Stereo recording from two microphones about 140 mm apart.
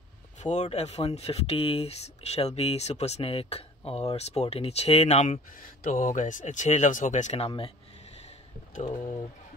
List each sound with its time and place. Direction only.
0.4 s speech: 55° left (ahead or behind)